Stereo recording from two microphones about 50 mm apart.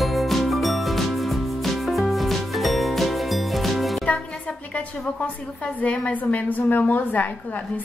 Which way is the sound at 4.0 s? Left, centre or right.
Left.